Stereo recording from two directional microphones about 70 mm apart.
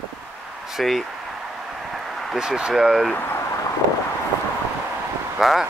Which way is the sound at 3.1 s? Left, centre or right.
Left.